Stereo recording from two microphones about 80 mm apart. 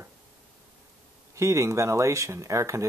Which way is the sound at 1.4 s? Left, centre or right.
Right.